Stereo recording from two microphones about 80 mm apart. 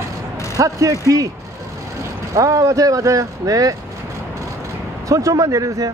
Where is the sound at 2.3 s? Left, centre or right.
Right.